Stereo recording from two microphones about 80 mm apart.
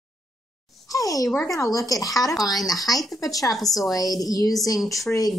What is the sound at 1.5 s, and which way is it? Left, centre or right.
Speech, left.